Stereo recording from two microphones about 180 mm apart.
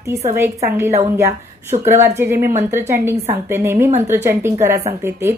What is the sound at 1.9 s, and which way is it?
A woman's voice, 15° right (ahead or behind).